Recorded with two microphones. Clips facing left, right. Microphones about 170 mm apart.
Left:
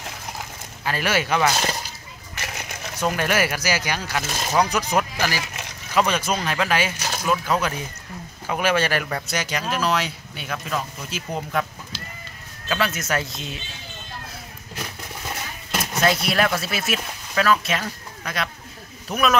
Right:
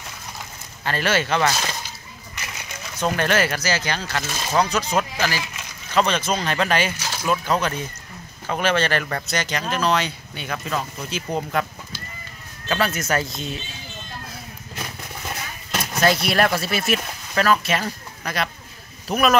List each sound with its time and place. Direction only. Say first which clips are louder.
0.8 s speech: right 1 dB; 10° left (ahead or behind)
2.3 s a sound: left 3 dB; 60° left (ahead or behind)
3.0 s speech: right 1 dB; 10° left (ahead or behind)
12.6 s speech: right 2 dB; centre (ahead or behind)
15.7 s speech: right 1 dB; 5° left (ahead or behind)